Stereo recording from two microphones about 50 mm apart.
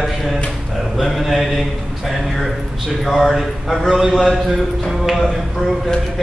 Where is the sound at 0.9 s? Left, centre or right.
Centre.